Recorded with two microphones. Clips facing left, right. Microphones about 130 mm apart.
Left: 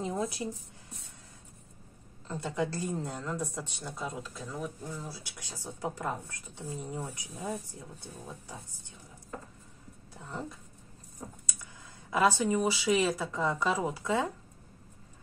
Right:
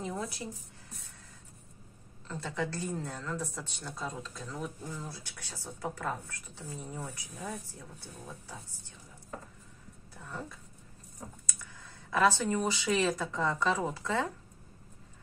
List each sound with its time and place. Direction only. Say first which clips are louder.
0.0 s speech: left 4 dB; 20° left (ahead or behind)
2.2 s a woman's voice: left 3 dB; 20° left (ahead or behind)
12.1 s speech: left 1 dB; 15° left (ahead or behind)